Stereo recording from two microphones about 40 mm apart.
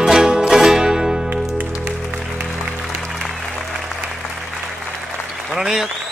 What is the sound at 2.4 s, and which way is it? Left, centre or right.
Music, centre.